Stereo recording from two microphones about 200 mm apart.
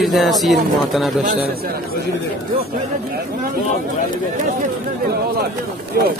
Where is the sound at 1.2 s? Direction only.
40° right (ahead or behind).